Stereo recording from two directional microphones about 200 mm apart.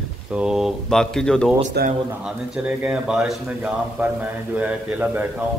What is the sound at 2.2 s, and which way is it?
Speech, 10° right (ahead or behind).